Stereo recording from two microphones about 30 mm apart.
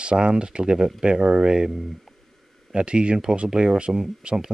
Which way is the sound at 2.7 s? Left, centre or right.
Right.